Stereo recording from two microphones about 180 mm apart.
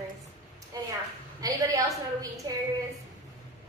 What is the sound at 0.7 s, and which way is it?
A woman's voice, 20° right (ahead or behind).